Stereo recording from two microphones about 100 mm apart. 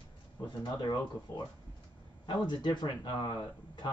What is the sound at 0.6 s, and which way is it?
Speech, 45° left (ahead or behind).